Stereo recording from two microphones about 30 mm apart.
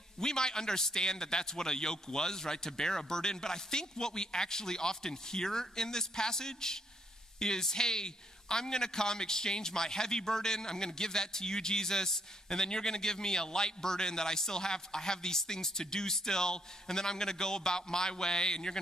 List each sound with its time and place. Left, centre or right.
0.2 s a man's voice: left